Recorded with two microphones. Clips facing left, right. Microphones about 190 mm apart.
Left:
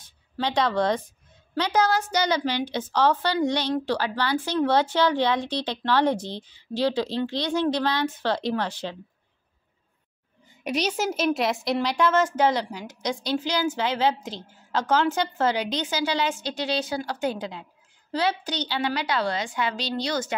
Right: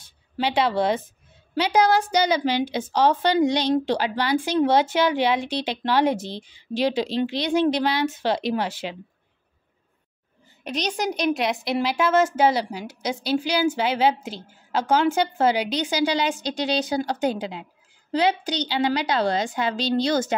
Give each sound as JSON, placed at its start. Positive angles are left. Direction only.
{"t": 0.4, "sound": "a woman's voice", "side_deg": -10}
{"t": 10.6, "sound": "a woman's voice", "side_deg": 10}
{"t": 19.2, "sound": "a woman's voice", "side_deg": -45}
{"t": 19.7, "sound": "a woman's voice", "side_deg": -25}